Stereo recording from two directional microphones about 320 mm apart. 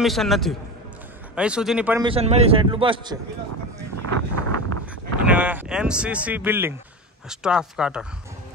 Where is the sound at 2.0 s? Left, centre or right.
Centre.